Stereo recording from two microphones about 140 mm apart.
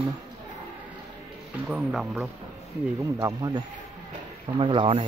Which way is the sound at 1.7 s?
5° right (ahead or behind).